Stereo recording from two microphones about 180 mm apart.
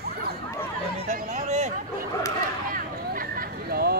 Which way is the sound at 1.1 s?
40° right (ahead or behind).